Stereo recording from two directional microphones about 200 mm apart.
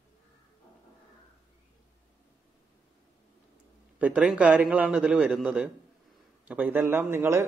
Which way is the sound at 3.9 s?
5° right (ahead or behind).